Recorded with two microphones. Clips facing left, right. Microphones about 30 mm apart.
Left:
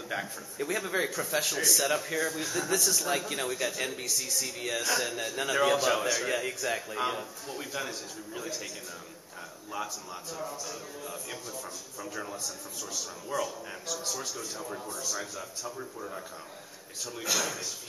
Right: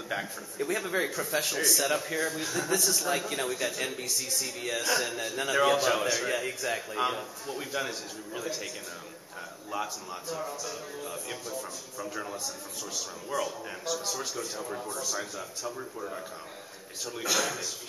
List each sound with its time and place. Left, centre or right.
0.1 s speech: centre
9.7 s a man's voice: centre